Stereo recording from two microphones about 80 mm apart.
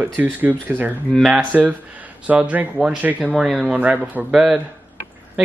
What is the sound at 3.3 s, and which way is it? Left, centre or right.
Speech, centre.